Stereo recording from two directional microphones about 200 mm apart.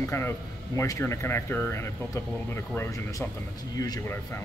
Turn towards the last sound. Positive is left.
turn(degrees=10)  # may be behind; listen again after turning